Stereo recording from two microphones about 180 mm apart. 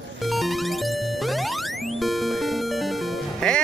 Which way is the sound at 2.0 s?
Centre (ahead or behind).